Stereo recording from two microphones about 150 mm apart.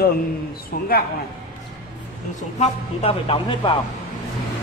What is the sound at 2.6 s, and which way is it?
A man's voice, 40° left (ahead or behind).